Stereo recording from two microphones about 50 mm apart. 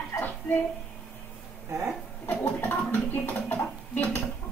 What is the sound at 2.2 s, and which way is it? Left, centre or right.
Speech, left.